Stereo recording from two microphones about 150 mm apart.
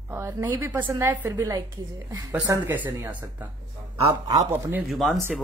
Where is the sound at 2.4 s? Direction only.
15° right (ahead or behind).